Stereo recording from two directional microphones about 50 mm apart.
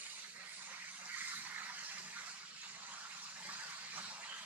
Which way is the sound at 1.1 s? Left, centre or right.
Right.